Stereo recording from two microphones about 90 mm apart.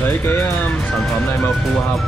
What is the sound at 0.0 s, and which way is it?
Speech, 20° left (ahead or behind).